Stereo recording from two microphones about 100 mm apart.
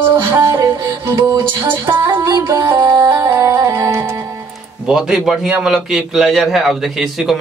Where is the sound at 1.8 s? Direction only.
55° right (ahead or behind).